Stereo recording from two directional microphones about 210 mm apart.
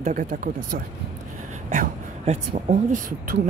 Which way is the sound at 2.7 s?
40° right (ahead or behind).